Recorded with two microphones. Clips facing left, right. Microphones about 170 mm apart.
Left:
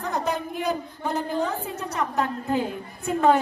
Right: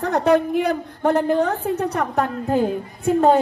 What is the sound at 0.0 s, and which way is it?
A woman's voice, 70° right (ahead or behind).